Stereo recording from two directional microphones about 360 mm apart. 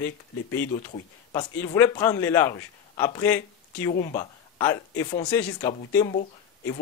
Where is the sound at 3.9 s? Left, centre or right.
Left.